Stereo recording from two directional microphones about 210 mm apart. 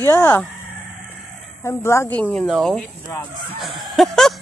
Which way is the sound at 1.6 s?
10° left (ahead or behind).